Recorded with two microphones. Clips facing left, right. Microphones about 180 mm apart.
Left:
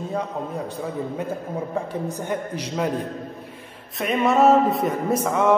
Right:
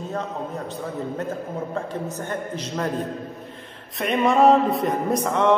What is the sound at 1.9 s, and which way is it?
A man's voice, 10° left (ahead or behind).